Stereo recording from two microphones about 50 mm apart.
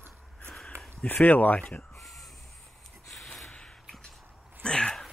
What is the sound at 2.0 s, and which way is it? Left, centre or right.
Crow, centre.